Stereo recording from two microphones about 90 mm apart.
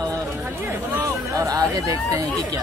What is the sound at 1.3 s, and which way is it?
Speech, 40° right (ahead or behind).